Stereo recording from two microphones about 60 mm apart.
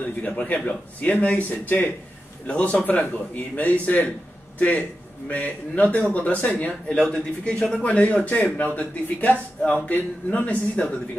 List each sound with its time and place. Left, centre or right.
0.0 s speech: left